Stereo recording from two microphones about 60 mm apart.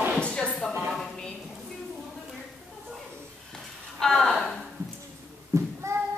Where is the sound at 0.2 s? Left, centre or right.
Centre.